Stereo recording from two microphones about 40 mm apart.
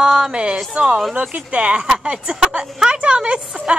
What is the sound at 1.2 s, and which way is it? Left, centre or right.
A woman's voice, right.